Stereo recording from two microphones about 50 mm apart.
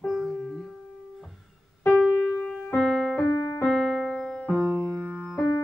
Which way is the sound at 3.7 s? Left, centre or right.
Centre.